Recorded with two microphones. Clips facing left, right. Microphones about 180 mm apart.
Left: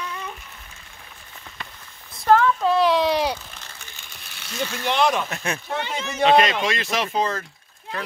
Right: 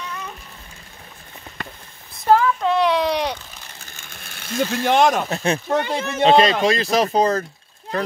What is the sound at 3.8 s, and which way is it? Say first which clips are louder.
Speech: right 3 dB; 45° right (ahead or behind).